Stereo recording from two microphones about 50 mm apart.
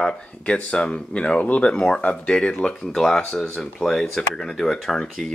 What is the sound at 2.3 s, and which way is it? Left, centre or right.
Speech, centre.